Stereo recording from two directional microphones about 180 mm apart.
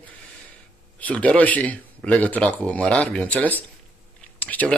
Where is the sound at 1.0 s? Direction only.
10° left (ahead or behind).